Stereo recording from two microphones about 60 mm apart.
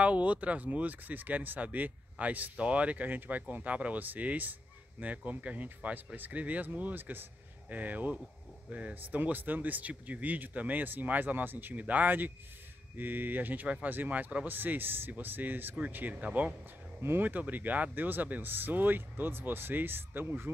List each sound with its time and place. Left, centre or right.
0.0 s speech: right